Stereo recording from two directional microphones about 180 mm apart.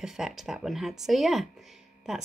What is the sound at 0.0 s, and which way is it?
Speech, centre (ahead or behind).